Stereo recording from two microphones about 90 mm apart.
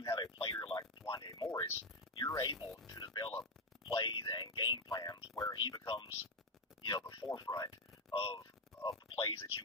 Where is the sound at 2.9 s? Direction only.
50° left (ahead or behind).